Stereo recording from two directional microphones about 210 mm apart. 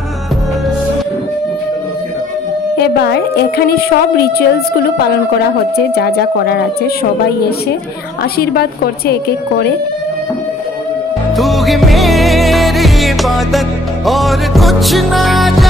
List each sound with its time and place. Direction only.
2.8 s a woman's voice: 50° left (ahead or behind)
11.3 s music: centre (ahead or behind)